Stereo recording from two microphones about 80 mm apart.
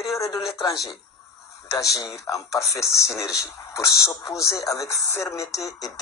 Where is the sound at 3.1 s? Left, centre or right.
Left.